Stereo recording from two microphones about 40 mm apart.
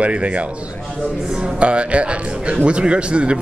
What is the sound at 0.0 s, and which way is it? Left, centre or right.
Speech, right.